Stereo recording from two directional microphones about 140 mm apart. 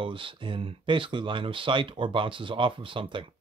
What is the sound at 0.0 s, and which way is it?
Speech, 40° right (ahead or behind).